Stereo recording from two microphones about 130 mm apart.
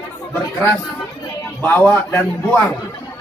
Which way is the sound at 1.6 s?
15° left (ahead or behind).